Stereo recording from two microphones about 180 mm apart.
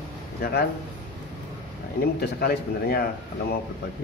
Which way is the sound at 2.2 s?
60° left (ahead or behind).